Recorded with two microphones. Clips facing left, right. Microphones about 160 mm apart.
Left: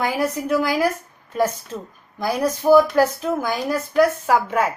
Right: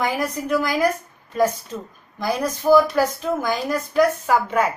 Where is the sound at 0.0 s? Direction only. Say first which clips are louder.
Left 1 dB; 10° left (ahead or behind).